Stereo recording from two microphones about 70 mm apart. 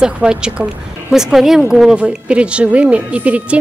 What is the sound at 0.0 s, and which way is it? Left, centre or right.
A woman's voice, centre.